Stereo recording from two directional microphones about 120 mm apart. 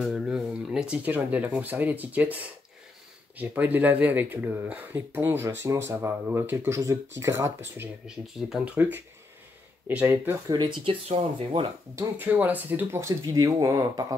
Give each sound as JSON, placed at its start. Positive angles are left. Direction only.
{"t": 0.0, "sound": "speech", "side_deg": 0}
{"t": 8.5, "sound": "speech", "side_deg": -5}
{"t": 8.7, "sound": "speech", "side_deg": -15}
{"t": 10.5, "sound": "speech", "side_deg": -40}
{"t": 11.1, "sound": "speech", "side_deg": -50}
{"t": 11.9, "sound": "speech", "side_deg": -20}
{"t": 13.2, "sound": "speech", "side_deg": -30}